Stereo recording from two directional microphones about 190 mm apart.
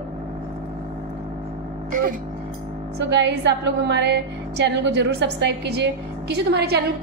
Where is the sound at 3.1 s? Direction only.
65° right (ahead or behind).